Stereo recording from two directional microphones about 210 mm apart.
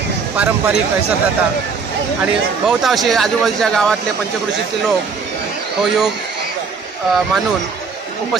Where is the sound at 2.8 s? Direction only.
Centre (ahead or behind).